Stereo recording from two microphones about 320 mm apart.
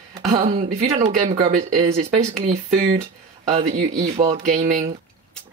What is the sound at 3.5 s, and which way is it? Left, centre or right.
Speech, right.